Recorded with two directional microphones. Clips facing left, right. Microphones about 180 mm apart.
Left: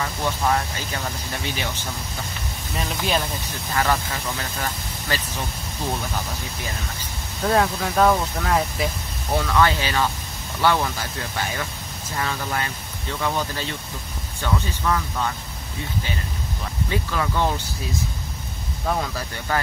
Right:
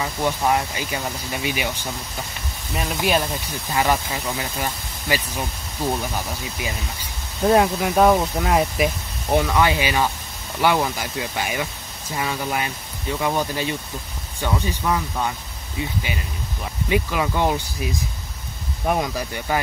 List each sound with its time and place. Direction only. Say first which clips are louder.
0.0 s speech: right 2 dB; 15° right (ahead or behind)
7.4 s speech: right 4 dB; 20° right (ahead or behind)
16.9 s speech: right 4 dB; 15° right (ahead or behind)
18.9 s speech: right 3 dB; 15° right (ahead or behind)